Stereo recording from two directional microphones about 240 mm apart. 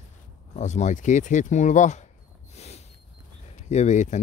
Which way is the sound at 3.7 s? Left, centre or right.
Left.